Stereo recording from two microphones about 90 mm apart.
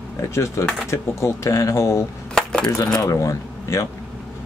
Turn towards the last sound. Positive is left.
turn(degrees=35)  # may be behind; listen again after turning